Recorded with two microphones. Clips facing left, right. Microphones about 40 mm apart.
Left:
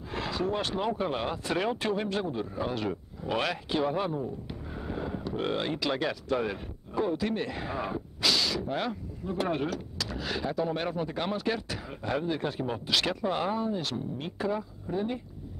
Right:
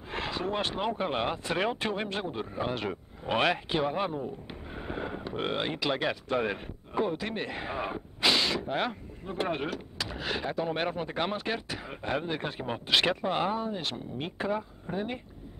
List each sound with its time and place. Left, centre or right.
0.1 s speech: right
4.7 s speech: right